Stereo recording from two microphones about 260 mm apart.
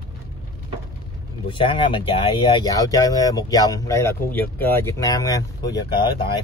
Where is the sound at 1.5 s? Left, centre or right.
Centre.